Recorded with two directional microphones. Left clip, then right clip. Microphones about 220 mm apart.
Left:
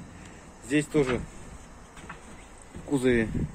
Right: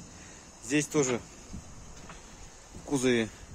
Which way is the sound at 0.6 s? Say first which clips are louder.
Left 3 dB; 15° right (ahead or behind).